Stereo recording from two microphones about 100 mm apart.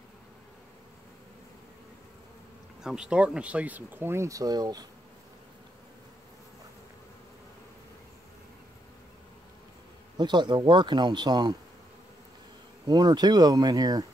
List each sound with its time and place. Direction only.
2.8 s speech: 5° right (ahead or behind); by 4.8 s 40° right (ahead or behind)
10.1 s speech: 50° right (ahead or behind)
12.8 s speech: 40° right (ahead or behind)